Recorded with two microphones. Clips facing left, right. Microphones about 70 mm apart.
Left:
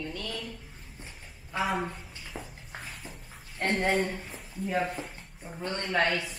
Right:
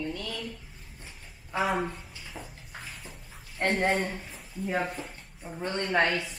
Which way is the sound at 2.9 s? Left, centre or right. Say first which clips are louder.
Left 1 dB; centre.